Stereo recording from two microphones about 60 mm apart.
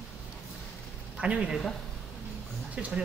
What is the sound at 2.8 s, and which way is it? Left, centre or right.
Speech, right.